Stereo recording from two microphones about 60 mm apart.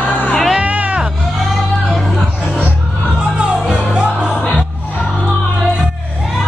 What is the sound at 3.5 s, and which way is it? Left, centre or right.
Music, centre.